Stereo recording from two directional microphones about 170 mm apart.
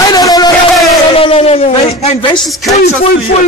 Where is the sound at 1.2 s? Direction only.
35° left (ahead or behind).